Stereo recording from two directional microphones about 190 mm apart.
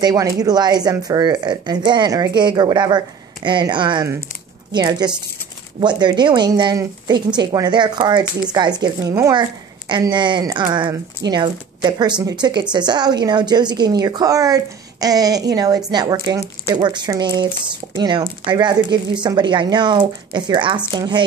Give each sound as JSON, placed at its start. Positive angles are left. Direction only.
{"t": 0.0, "sound": "speech", "side_deg": -20}